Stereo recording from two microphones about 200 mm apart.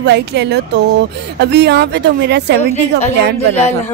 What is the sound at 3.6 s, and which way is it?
Speech, 35° left (ahead or behind).